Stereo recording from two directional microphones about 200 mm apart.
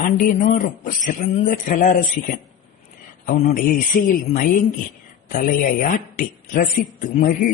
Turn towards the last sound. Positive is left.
turn(degrees=45)  # may be behind; listen again after turning